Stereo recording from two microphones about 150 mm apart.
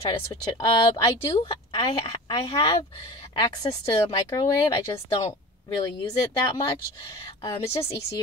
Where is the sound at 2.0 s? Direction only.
40° left (ahead or behind).